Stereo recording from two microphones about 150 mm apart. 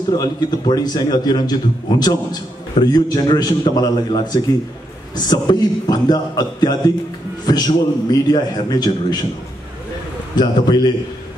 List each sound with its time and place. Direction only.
0.1 s a man's voice: 25° left (ahead or behind)
10.3 s a man's voice: 30° left (ahead or behind)